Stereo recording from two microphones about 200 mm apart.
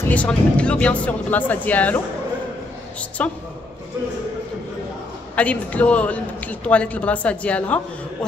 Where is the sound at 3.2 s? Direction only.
5° left (ahead or behind).